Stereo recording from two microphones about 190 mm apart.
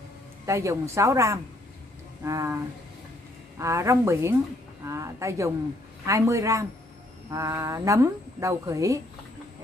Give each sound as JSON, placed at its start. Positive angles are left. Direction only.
{"t": 0.5, "sound": "a woman's voice", "side_deg": -15}